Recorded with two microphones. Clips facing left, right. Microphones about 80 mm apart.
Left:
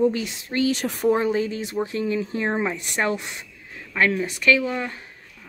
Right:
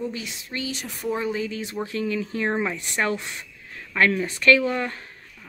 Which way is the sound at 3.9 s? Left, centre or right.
Centre.